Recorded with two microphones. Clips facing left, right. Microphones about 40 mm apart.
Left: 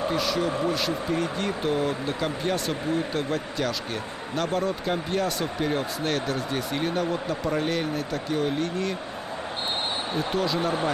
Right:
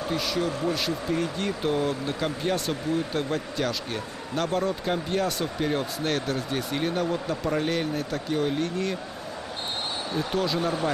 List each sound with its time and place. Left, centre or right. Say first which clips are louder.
0.1 s speech: left 2 dB; centre
10.1 s speech: even; centre
10.6 s speech: left 1 dB; left